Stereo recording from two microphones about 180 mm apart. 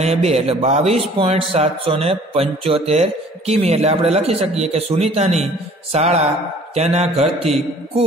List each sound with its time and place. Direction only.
0.0 s a man's voice: 35° right (ahead or behind)